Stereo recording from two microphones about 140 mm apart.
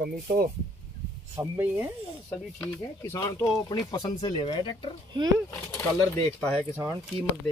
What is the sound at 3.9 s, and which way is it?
Speech, 40° left (ahead or behind).